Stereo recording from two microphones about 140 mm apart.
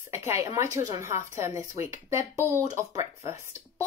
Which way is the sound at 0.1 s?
20° right (ahead or behind).